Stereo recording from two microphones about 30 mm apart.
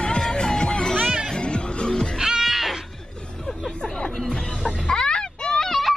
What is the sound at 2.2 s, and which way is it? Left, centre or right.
Music, centre.